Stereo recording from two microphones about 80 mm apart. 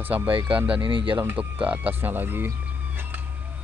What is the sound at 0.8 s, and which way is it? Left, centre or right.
Speech, right.